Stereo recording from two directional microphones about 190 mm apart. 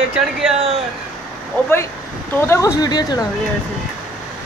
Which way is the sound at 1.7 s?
10° left (ahead or behind).